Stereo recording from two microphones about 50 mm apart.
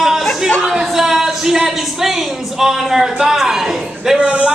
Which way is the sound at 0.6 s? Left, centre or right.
Centre.